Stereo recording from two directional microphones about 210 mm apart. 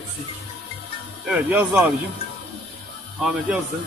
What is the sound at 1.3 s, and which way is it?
Speech, 5° right (ahead or behind).